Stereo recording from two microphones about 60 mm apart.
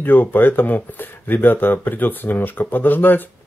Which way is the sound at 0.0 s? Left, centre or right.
Left.